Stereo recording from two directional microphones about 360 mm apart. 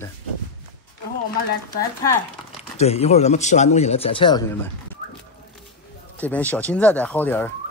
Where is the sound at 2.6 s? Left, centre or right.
Centre.